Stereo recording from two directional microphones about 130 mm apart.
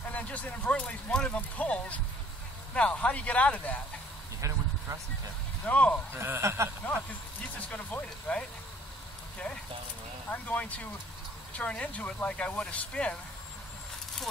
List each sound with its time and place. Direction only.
0.1 s speech: 10° left (ahead or behind)
4.4 s a sound: 25° right (ahead or behind)
5.7 s speech: 10° left (ahead or behind)
6.1 s a man's voice: 20° right (ahead or behind)
7.7 s speech: 10° left (ahead or behind)
10.3 s speech: 10° left (ahead or behind)